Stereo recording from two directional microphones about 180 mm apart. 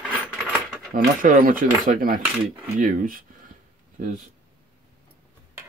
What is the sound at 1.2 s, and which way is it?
Speech, 50° right (ahead or behind).